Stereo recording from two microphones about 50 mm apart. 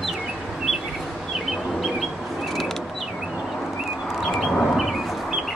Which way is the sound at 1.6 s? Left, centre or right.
Centre.